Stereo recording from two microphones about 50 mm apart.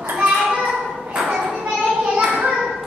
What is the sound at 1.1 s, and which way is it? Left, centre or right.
Children playing, centre.